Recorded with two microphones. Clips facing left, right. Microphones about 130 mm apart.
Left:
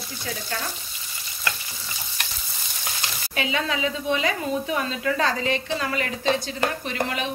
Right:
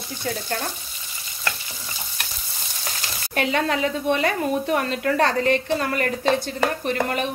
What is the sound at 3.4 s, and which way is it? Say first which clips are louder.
A woman's voice: right 4 dB; 55° right (ahead or behind).